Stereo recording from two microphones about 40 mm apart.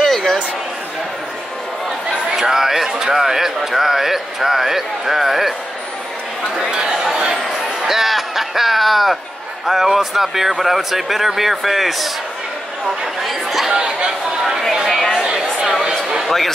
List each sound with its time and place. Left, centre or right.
0.0 s a sound: centre
2.3 s speech: centre
6.5 s speech: centre
13.7 s speech: centre
14.9 s speech: centre
15.2 s speech: centre